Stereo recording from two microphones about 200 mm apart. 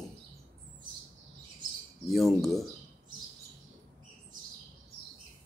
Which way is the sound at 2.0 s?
Centre (ahead or behind).